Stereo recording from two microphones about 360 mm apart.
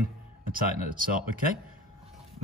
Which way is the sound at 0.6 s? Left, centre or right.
Right.